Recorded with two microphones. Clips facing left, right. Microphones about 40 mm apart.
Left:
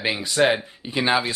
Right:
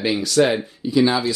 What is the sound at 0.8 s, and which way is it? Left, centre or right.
Speech, left.